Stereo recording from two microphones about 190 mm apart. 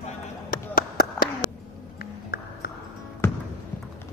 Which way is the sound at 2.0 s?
50° left (ahead or behind).